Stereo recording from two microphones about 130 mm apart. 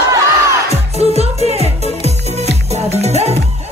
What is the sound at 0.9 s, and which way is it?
Music, 55° right (ahead or behind).